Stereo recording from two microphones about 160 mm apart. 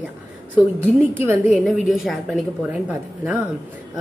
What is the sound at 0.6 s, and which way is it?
A woman's voice, 10° right (ahead or behind).